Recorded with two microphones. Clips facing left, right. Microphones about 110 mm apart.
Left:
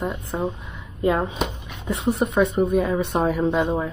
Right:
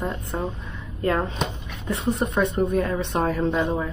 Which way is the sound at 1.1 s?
15° left (ahead or behind).